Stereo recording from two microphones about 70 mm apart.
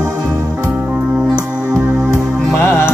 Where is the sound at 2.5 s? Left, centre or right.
Left.